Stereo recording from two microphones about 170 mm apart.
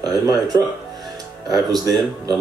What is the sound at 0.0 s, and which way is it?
Speech, 25° right (ahead or behind).